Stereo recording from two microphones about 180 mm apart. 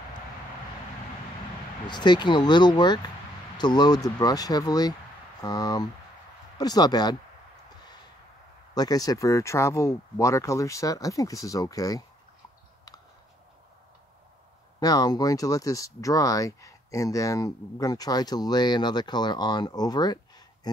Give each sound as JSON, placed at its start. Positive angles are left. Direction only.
{"t": 1.9, "sound": "speech", "side_deg": 25}
{"t": 8.7, "sound": "speech", "side_deg": 20}
{"t": 14.8, "sound": "speech", "side_deg": 20}